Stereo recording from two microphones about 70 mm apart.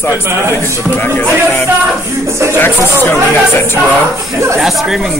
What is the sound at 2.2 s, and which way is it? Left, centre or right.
Speech, right.